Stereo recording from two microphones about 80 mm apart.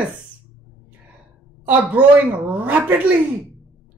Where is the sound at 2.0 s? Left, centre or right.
Centre.